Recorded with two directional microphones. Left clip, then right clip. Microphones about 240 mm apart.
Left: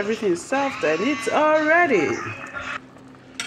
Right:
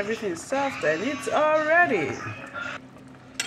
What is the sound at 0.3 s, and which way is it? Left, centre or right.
Speech, centre.